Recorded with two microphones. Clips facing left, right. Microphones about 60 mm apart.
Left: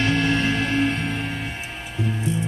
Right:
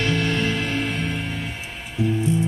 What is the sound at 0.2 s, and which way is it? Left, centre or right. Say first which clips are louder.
Music: left 2 dB; centre.